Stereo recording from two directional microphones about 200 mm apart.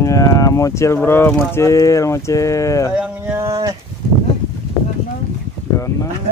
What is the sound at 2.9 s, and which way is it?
Speech, 5° right (ahead or behind).